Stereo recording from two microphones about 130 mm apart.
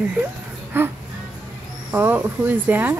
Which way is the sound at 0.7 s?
15° right (ahead or behind).